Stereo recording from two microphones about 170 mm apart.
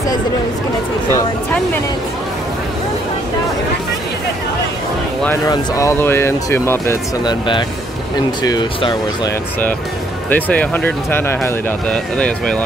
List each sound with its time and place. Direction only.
5.2 s speech: 15° left (ahead or behind)
7.2 s speech: 30° left (ahead or behind)
10.3 s speech: 10° left (ahead or behind)